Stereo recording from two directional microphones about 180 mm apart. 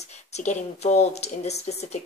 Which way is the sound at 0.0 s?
40° left (ahead or behind).